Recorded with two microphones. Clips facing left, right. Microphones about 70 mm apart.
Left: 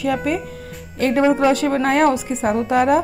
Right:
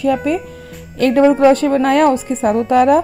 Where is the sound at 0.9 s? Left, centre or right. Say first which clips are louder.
Right 5 dB; right.